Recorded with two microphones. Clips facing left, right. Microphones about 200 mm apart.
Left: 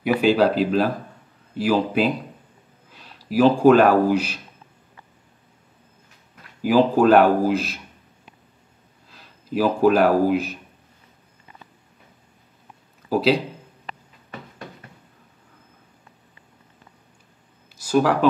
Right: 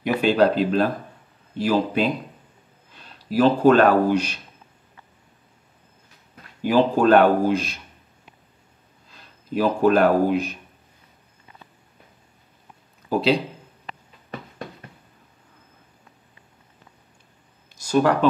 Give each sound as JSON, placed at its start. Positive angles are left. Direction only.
{"t": 0.0, "sound": "speech", "side_deg": 5}
{"t": 6.6, "sound": "speech", "side_deg": 5}
{"t": 9.1, "sound": "speech", "side_deg": 5}
{"t": 13.1, "sound": "speech", "side_deg": 5}
{"t": 17.7, "sound": "a sound", "side_deg": 5}